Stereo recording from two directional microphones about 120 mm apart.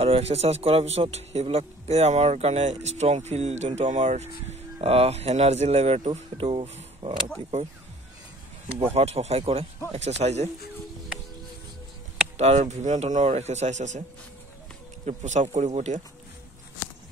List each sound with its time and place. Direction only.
0.0 s a man's voice: 55° right (ahead or behind)
8.9 s a man's voice: 60° right (ahead or behind)
9.9 s a man's voice: 65° right (ahead or behind)
12.4 s a man's voice: 65° right (ahead or behind)
15.0 s a man's voice: 80° right